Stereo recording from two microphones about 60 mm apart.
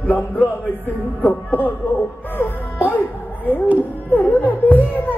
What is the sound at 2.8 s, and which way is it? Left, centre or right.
Music, left.